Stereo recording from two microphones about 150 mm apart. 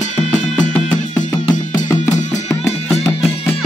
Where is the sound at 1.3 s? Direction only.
25° left (ahead or behind).